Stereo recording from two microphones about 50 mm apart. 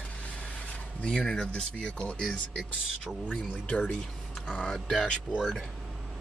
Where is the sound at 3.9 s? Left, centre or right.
Centre.